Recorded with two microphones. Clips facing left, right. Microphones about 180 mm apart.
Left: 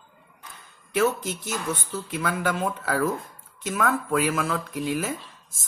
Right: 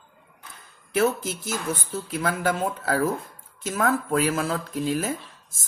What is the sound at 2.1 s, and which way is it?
Speech, 35° right (ahead or behind).